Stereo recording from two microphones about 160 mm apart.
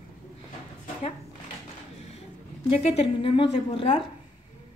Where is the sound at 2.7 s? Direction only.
40° left (ahead or behind).